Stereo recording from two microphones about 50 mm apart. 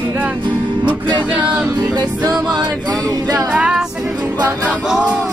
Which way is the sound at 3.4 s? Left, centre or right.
Right.